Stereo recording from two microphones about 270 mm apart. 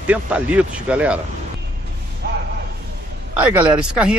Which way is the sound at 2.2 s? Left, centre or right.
Right.